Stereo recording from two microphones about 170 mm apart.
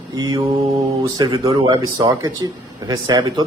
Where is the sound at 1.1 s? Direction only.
20° right (ahead or behind).